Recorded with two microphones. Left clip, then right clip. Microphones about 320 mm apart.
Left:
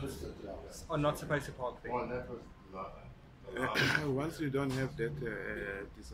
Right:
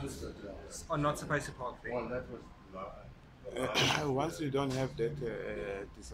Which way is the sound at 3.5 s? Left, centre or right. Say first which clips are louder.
Right 1 dB; centre.